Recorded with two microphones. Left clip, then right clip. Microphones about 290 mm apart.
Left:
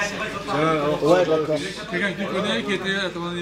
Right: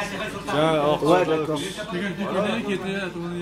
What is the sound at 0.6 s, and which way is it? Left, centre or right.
Speech, right.